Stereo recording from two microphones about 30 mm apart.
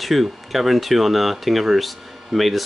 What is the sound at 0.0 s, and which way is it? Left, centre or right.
Speech, centre.